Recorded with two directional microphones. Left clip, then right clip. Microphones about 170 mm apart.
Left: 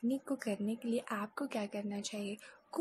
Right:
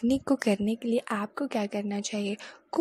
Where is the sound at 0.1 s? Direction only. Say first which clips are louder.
Right 12 dB; 45° right (ahead or behind).